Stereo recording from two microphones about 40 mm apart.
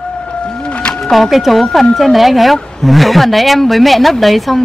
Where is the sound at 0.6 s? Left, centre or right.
Left.